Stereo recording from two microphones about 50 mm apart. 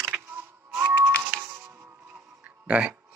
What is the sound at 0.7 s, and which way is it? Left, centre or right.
Music, right.